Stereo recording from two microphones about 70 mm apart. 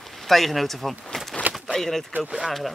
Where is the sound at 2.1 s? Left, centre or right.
Right.